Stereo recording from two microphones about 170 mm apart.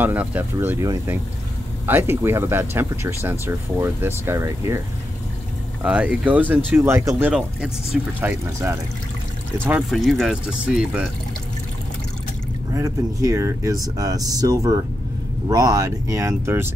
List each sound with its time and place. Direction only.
0.0 s speech: 10° right (ahead or behind)
12.7 s speech: 20° right (ahead or behind)